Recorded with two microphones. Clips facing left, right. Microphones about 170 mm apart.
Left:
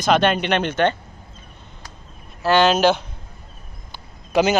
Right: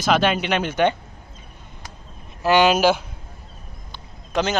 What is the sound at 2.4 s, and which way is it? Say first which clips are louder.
Speech: even; 10° right (ahead or behind).